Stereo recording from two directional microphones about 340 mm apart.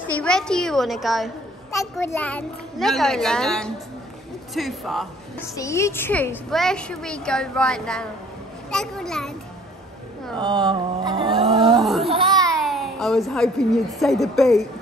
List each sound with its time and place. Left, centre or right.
0.1 s a woman's voice: centre
10.3 s a sound: centre
11.8 s a child's voice: centre
12.1 s babbling: centre
12.4 s a sound: centre
13.9 s a woman's voice: centre